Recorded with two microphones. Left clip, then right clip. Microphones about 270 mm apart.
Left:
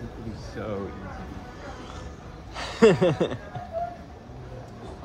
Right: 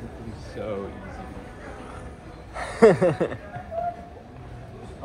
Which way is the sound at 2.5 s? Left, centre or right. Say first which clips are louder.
Right 2 dB; centre.